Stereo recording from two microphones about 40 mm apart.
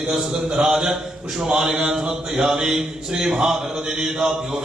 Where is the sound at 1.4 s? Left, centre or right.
Right.